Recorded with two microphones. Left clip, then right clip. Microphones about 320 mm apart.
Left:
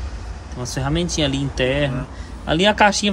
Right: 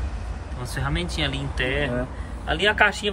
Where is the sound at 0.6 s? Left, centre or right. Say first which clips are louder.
Left 5 dB; centre.